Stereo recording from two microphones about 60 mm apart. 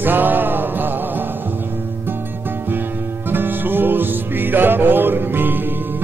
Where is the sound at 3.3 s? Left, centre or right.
Right.